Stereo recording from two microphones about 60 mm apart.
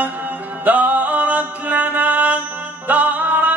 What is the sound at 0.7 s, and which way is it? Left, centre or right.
Mantra, right.